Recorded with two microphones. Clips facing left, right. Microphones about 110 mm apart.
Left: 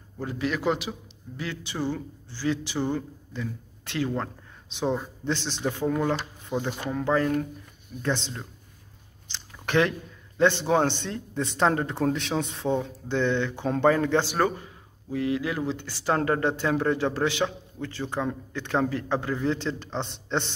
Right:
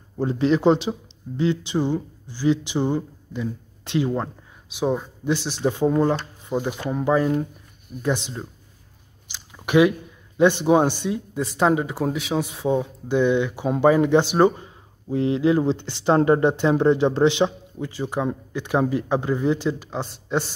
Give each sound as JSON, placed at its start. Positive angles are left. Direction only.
{"t": 0.2, "sound": "speech", "side_deg": -30}
{"t": 6.5, "sound": "speech", "side_deg": -10}